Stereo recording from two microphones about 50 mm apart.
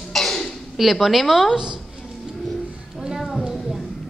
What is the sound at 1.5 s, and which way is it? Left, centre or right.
Speech, centre.